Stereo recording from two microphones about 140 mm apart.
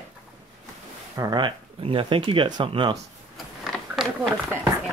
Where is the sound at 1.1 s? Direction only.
30° right (ahead or behind).